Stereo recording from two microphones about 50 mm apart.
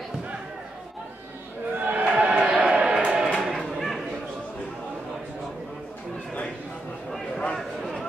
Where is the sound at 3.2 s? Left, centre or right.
Centre.